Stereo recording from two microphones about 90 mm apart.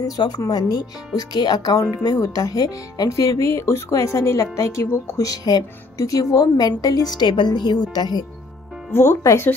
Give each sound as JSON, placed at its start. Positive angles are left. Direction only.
{"t": 0.0, "sound": "speech", "side_deg": 45}
{"t": 8.9, "sound": "speech", "side_deg": 30}